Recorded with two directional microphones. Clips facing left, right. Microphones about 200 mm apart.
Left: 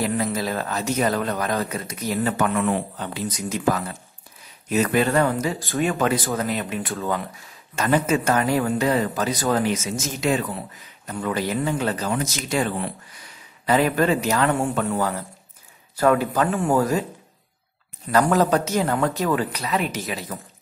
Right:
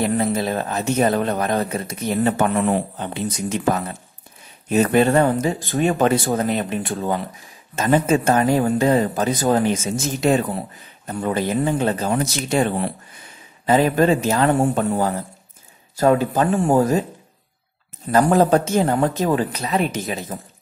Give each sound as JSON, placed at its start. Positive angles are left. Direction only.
{"t": 0.0, "sound": "speech", "side_deg": -25}
{"t": 3.0, "sound": "speech", "side_deg": -25}
{"t": 9.8, "sound": "speech", "side_deg": -40}
{"t": 11.1, "sound": "speech", "side_deg": -30}
{"t": 14.5, "sound": "speech", "side_deg": -40}
{"t": 16.0, "sound": "speech", "side_deg": -25}
{"t": 18.1, "sound": "speech", "side_deg": -30}
{"t": 20.3, "sound": "speech", "side_deg": -30}